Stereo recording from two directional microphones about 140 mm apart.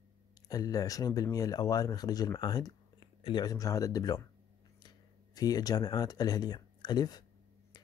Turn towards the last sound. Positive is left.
turn(degrees=30)  # may be behind; listen again after turning